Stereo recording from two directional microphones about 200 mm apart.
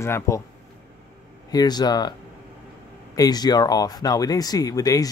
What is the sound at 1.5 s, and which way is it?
Speech, 20° left (ahead or behind).